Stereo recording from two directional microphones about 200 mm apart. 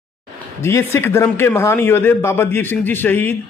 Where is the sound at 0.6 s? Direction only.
15° left (ahead or behind).